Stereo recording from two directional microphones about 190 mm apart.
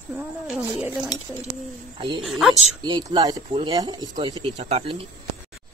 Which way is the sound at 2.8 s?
20° right (ahead or behind).